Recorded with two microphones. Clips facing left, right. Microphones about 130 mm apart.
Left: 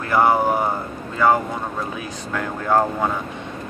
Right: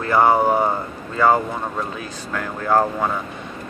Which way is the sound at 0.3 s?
20° right (ahead or behind).